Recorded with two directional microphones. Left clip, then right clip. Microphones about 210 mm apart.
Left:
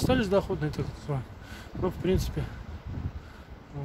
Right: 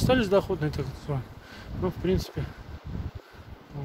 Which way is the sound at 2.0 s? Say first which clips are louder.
Right 1 dB; 10° left (ahead or behind).